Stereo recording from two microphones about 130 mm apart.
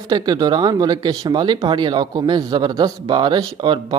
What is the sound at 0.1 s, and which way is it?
Speech, 30° right (ahead or behind).